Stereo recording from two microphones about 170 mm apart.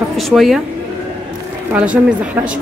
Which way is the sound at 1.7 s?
10° right (ahead or behind).